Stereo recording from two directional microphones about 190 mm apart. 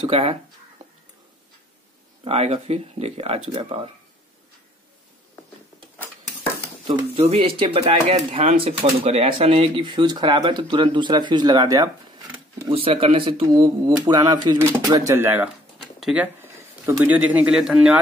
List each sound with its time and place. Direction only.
0.0 s speech: 30° right (ahead or behind)
2.2 s speech: 30° right (ahead or behind)
7.2 s speech: 30° right (ahead or behind)
12.7 s speech: 30° right (ahead or behind); by 17.9 s 5° right (ahead or behind)